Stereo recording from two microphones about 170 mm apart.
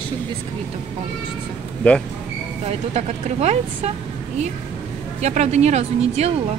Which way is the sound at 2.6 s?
40° right (ahead or behind).